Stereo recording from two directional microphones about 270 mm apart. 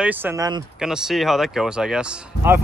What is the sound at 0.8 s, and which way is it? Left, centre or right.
Speech, centre.